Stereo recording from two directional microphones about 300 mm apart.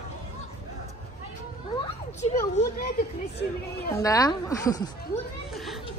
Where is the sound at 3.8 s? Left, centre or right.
Centre.